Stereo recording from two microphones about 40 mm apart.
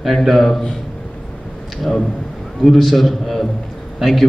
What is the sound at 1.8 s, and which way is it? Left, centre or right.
A man's voice, centre.